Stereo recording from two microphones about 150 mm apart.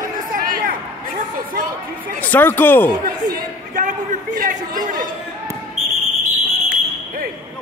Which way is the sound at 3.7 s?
60° right (ahead or behind).